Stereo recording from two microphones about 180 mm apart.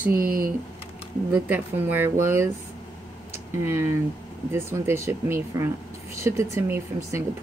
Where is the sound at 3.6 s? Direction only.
15° right (ahead or behind).